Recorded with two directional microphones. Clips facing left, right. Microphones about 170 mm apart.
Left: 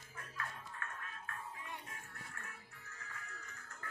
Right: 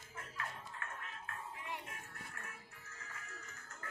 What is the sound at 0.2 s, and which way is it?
Music, 20° right (ahead or behind).